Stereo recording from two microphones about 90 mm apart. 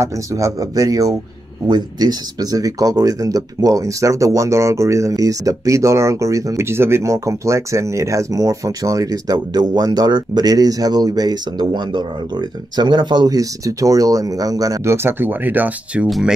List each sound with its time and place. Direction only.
0.0 s speech: 35° right (ahead or behind)
14.9 s speech: 25° right (ahead or behind)
16.1 s speech: 5° right (ahead or behind)